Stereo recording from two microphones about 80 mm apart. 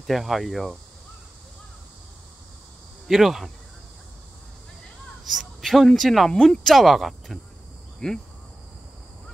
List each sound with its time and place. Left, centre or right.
0.0 s speech: centre
3.1 s speech: centre
5.2 s speech: centre